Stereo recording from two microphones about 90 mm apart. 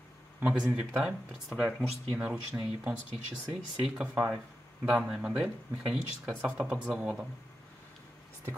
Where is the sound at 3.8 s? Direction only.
10° right (ahead or behind).